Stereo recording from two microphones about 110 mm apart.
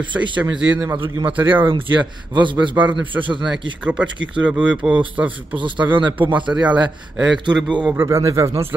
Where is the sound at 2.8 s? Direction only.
10° right (ahead or behind).